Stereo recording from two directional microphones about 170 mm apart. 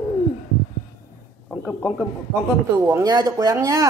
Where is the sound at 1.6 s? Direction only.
5° right (ahead or behind).